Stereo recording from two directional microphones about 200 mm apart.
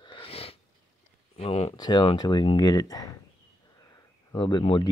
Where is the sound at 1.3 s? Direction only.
30° left (ahead or behind).